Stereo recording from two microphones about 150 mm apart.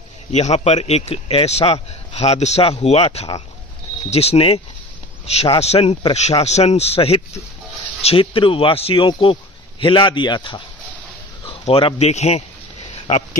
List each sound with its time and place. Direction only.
0.3 s a man's voice: 45° left (ahead or behind); by 10.6 s 30° left (ahead or behind)
11.6 s a man's voice: 45° left (ahead or behind)